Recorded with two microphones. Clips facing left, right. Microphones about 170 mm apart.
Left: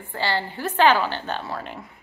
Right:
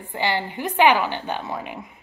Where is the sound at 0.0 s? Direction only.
15° right (ahead or behind).